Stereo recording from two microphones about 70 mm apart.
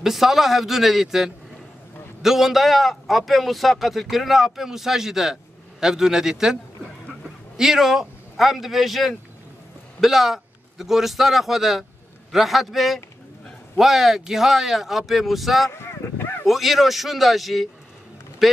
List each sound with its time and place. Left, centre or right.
0.0 s a man's voice: centre
15.7 s a sound: left
16.4 s a man's voice: centre